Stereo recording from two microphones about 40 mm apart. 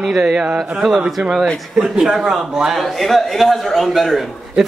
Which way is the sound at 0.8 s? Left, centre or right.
Centre.